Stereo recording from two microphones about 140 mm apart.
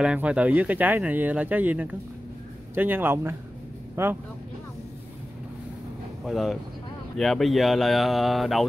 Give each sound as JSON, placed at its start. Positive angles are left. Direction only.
{"t": 0.0, "sound": "speech", "side_deg": -10}
{"t": 6.2, "sound": "speech", "side_deg": 0}